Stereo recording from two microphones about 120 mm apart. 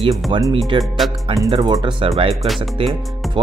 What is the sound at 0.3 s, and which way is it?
Speech, 45° right (ahead or behind).